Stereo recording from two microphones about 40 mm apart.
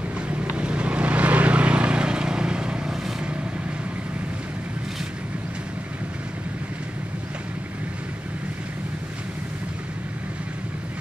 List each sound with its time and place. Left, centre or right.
0.4 s vehicle: right